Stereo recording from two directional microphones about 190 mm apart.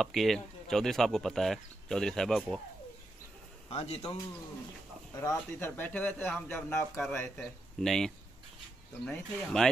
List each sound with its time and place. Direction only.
0.0 s speech: centre (ahead or behind)
3.7 s a man's voice: 35° left (ahead or behind)
5.1 s speech: 15° left (ahead or behind)